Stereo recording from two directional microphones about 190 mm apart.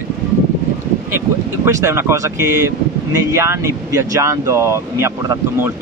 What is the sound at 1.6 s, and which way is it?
Speech, 15° right (ahead or behind).